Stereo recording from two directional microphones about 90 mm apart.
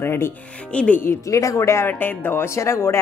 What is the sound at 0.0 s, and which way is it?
Speech, 25° left (ahead or behind).